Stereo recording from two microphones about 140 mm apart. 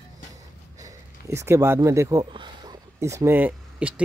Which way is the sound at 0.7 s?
20° right (ahead or behind).